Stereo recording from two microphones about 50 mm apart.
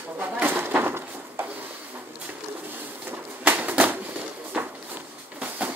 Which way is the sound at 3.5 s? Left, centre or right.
Right.